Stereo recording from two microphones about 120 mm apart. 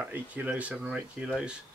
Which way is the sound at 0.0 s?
10° right (ahead or behind).